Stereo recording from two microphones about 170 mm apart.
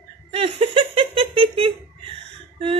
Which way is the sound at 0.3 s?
35° right (ahead or behind).